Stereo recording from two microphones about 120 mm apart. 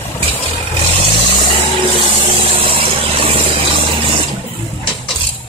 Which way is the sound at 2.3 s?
50° right (ahead or behind).